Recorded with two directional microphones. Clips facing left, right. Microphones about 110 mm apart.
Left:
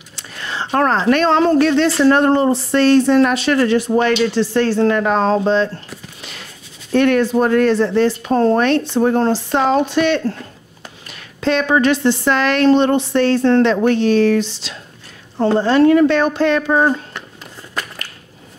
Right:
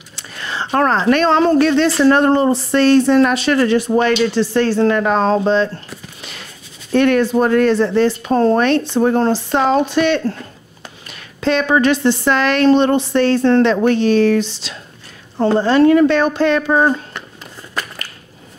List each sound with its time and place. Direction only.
0.4 s speech: 25° right (ahead or behind)
6.9 s speech: 25° right (ahead or behind)
11.4 s speech: 25° right (ahead or behind)
17.7 s crushing: 20° right (ahead or behind)